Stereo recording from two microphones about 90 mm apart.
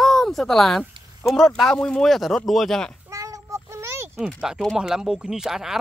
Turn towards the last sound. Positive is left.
turn(degrees=-5)  # may be behind; listen again after turning